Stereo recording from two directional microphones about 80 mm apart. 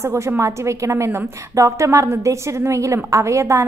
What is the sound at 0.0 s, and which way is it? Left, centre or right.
A woman's voice, right.